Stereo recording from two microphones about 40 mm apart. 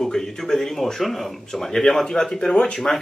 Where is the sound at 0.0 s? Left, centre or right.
Centre.